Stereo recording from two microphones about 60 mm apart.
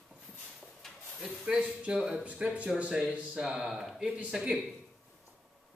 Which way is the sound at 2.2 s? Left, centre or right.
Right.